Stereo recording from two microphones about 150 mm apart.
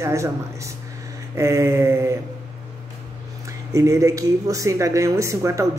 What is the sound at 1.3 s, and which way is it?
Speech, 20° right (ahead or behind).